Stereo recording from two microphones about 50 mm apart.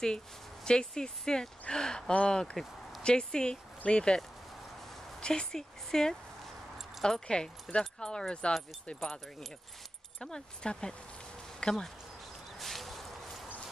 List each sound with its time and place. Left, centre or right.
0.7 s speech: centre
5.2 s speech: centre
10.2 s speech: centre
12.5 s a sound: centre